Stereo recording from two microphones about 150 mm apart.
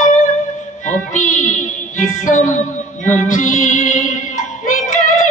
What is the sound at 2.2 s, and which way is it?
Child singing, 60° left (ahead or behind).